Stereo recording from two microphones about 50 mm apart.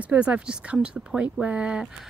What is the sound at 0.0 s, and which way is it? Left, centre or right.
Speech, right.